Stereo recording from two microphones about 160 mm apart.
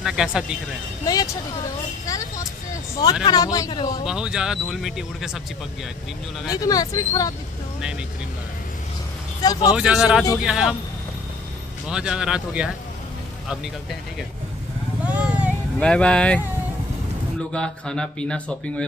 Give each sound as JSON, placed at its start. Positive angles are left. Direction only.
{"t": 0.0, "sound": "speech", "side_deg": -5}
{"t": 1.0, "sound": "speech", "side_deg": 25}
{"t": 2.0, "sound": "vehicle", "side_deg": 20}
{"t": 3.3, "sound": "speech", "side_deg": 25}
{"t": 4.0, "sound": "speech", "side_deg": -5}
{"t": 6.5, "sound": "speech", "side_deg": 25}
{"t": 9.4, "sound": "speech", "side_deg": 25}
{"t": 9.8, "sound": "speech", "side_deg": -5}
{"t": 11.9, "sound": "speech", "side_deg": -5}
{"t": 15.0, "sound": "vehicle", "side_deg": -10}
{"t": 15.8, "sound": "speech", "side_deg": 5}
{"t": 17.5, "sound": "speech", "side_deg": 5}